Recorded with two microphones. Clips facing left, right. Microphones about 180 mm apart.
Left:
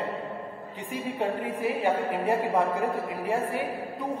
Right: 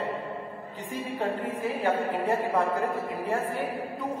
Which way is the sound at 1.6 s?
15° left (ahead or behind).